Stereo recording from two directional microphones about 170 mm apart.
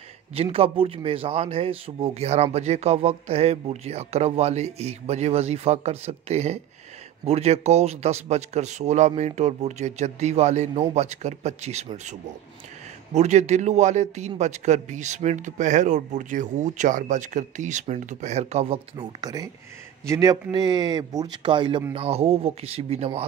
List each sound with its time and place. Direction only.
0.3 s a man's voice: 35° right (ahead or behind)
19.2 s a man's voice: 20° right (ahead or behind)